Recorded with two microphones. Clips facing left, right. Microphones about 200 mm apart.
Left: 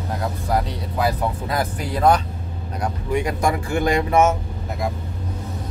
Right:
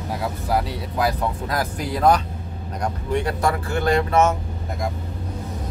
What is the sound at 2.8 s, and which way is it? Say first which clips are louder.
Speech: left 1 dB; 10° left (ahead or behind).